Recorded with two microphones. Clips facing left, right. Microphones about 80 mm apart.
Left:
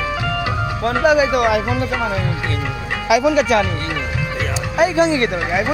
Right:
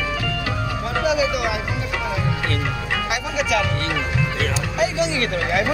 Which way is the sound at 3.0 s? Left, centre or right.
Left.